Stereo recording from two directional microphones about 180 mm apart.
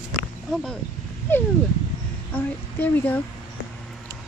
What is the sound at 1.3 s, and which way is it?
Speech, 10° left (ahead or behind).